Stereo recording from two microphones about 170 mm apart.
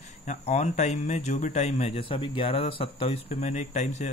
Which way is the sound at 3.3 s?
45° left (ahead or behind).